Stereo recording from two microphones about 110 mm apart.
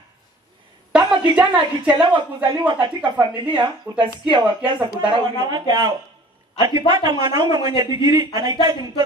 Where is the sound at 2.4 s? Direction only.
50° right (ahead or behind).